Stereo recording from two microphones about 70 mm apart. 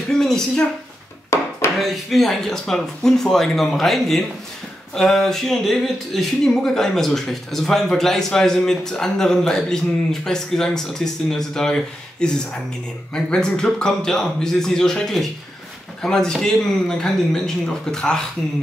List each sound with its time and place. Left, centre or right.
0.1 s speech: centre
1.3 s a sound: left
1.8 s speech: centre